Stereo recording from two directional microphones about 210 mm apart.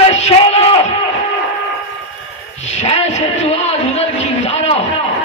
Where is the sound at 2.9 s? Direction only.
30° left (ahead or behind).